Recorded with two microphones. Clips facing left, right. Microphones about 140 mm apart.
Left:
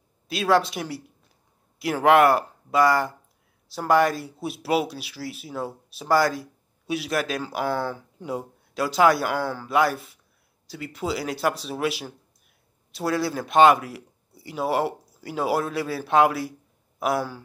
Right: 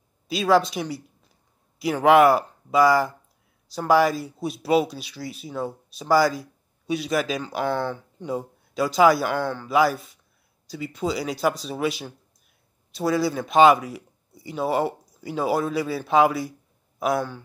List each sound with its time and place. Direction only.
0.3 s speech: centre (ahead or behind)